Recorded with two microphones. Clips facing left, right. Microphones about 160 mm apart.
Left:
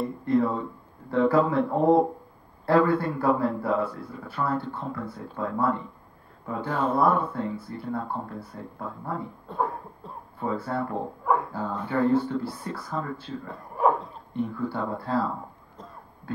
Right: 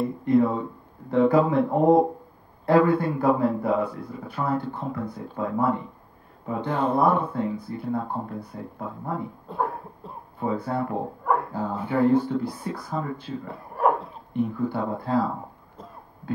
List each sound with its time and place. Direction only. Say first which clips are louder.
0.2 s speech: right 3 dB; 15° right (ahead or behind)
9.6 s cough: right 1 dB; 5° right (ahead or behind)
10.4 s speech: right 2 dB; 15° right (ahead or behind)
11.2 s dog: even; centre (ahead or behind)
11.5 s speech: right 2 dB; 10° right (ahead or behind)
14.6 s speech: right 3 dB; 15° right (ahead or behind)